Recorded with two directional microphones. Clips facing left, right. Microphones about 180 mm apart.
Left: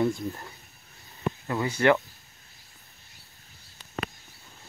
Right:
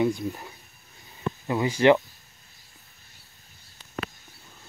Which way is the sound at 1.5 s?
20° right (ahead or behind).